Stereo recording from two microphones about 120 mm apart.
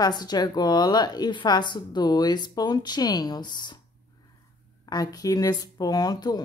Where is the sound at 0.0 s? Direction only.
35° left (ahead or behind).